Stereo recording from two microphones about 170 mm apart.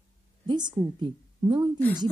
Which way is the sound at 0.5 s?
25° right (ahead or behind).